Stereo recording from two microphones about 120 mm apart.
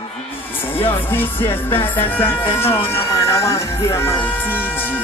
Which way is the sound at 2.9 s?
25° left (ahead or behind).